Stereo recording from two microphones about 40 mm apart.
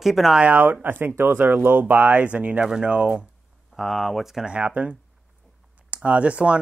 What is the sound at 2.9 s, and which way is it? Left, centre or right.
Speech, right.